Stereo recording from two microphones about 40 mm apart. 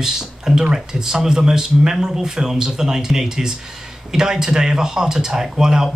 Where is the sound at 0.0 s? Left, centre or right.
Centre.